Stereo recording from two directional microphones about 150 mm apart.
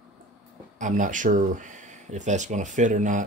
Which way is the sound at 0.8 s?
60° right (ahead or behind).